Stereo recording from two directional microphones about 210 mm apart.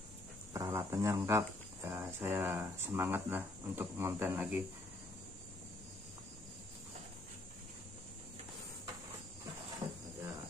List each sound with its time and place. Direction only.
0.5 s speech: 15° right (ahead or behind)